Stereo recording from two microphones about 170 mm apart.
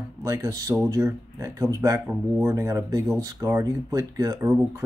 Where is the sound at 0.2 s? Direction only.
20° right (ahead or behind).